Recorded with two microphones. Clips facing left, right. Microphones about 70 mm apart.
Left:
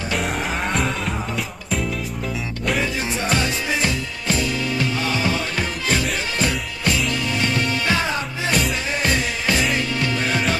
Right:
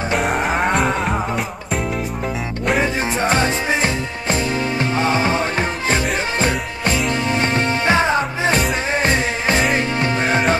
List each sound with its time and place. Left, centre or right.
0.2 s music: centre
2.8 s music: right